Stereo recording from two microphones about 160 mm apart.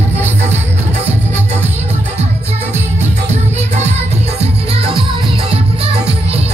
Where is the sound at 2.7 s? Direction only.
45° right (ahead or behind).